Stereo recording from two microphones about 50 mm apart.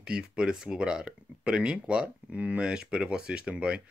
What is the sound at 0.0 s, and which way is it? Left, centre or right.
Speech, centre.